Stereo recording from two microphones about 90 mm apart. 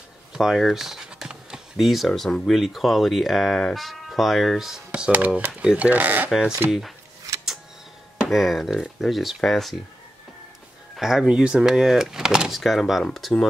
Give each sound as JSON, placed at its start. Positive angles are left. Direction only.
{"t": 0.3, "sound": "speech", "side_deg": -5}
{"t": 8.2, "sound": "speech", "side_deg": 0}
{"t": 11.0, "sound": "speech", "side_deg": -5}